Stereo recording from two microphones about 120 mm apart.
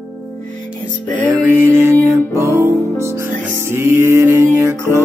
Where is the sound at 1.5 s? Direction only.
20° right (ahead or behind).